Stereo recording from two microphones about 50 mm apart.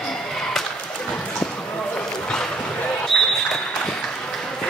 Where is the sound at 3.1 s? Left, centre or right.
Centre.